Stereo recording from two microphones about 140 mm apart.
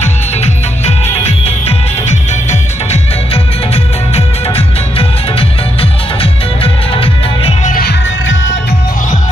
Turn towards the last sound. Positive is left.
turn(degrees=75)  # may be behind; listen again after turning